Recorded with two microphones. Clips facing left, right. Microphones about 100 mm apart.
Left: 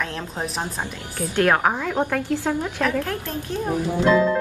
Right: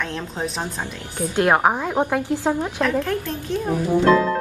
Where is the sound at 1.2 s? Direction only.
20° right (ahead or behind).